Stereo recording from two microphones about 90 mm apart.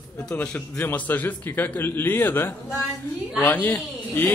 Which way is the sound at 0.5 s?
20° left (ahead or behind).